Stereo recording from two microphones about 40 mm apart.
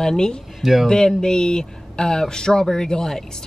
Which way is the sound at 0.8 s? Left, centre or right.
Centre.